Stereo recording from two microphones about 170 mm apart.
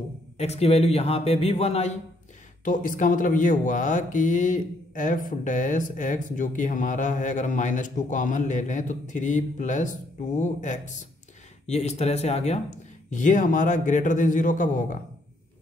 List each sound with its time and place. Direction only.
0.4 s a man's voice: 40° left (ahead or behind)
2.6 s speech: 50° left (ahead or behind)